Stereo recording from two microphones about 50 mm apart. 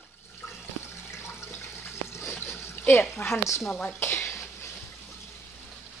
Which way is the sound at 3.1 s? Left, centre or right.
Left.